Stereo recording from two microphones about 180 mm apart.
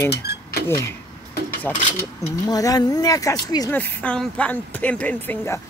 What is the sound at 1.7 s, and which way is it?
Speech, 10° left (ahead or behind).